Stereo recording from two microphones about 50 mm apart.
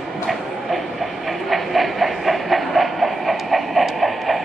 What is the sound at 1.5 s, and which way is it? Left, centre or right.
Train, centre.